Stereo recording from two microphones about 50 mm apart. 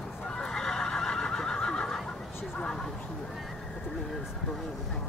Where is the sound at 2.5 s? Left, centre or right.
Centre.